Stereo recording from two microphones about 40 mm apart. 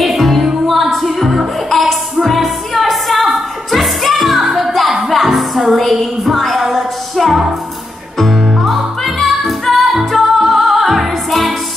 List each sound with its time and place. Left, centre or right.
0.0 s music: centre
8.5 s music: centre